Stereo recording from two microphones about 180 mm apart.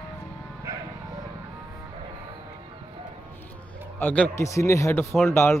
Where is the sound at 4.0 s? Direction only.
10° left (ahead or behind).